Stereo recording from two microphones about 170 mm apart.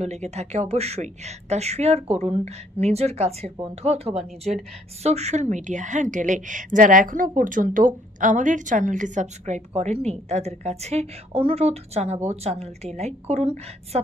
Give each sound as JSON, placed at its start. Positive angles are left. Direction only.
{"t": 0.0, "sound": "a woman's voice", "side_deg": -40}